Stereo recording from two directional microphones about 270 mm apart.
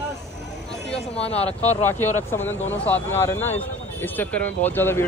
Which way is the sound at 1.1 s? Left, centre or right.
Left.